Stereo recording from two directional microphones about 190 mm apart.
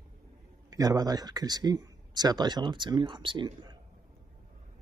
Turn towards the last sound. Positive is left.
turn(degrees=-25)  # may be behind; listen again after turning